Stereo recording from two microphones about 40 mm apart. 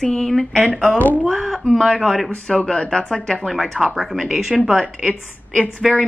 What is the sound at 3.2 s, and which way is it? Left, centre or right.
Speech, centre.